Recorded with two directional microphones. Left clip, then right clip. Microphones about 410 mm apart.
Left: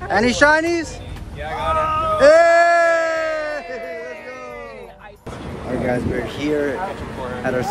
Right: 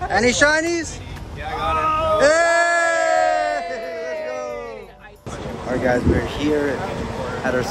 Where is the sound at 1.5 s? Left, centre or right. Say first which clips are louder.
Even; centre.